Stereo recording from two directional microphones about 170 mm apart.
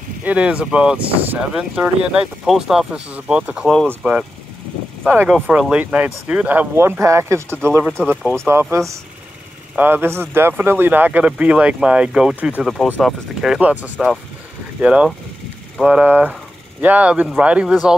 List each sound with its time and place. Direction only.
0.2 s speech: 10° right (ahead or behind)
5.0 s speech: 10° right (ahead or behind)